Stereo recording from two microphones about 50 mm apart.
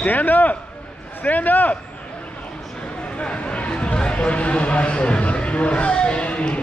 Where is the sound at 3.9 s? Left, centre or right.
Left.